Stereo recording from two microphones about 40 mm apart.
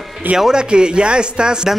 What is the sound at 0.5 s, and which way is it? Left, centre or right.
Speech, right.